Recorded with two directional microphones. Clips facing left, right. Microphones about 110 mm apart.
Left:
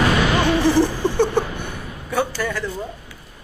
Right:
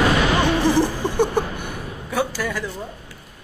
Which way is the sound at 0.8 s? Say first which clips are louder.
Left 1 dB; 15° right (ahead or behind).